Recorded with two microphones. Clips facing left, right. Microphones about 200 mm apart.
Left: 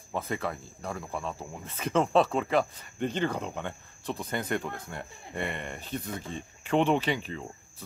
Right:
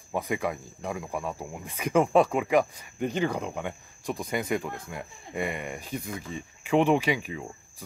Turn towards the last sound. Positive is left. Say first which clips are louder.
# right 2 dB
turn(degrees=-10)  # may be behind; listen again after turning